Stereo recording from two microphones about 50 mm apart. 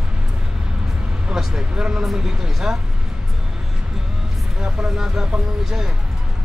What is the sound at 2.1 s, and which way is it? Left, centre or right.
Speech, centre.